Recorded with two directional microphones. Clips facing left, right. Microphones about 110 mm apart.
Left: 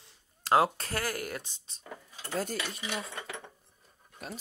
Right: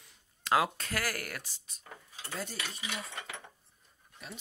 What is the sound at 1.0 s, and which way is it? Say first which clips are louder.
Speech: left 3 dB; 20° left (ahead or behind).